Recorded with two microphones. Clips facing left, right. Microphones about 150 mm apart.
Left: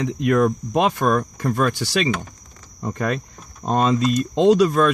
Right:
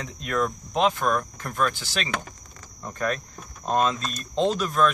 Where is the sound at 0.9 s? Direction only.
85° left.